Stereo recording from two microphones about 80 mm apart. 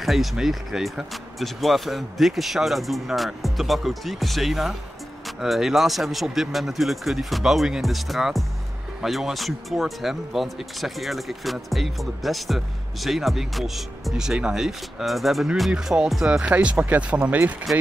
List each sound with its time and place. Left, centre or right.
0.0 s speech: centre